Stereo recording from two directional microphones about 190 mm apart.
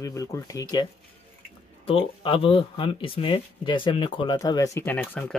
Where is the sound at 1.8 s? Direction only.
30° left (ahead or behind).